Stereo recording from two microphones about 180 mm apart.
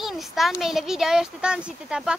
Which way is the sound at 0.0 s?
Centre (ahead or behind).